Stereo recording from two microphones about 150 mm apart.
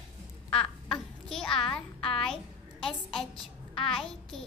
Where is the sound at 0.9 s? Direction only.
5° left (ahead or behind).